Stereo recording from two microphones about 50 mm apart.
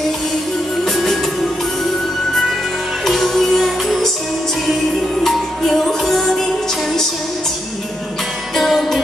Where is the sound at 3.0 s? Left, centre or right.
Centre.